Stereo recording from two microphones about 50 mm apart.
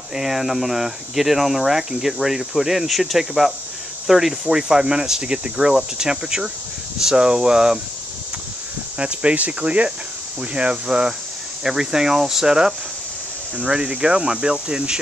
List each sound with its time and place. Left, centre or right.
0.1 s speech: centre
8.9 s speech: right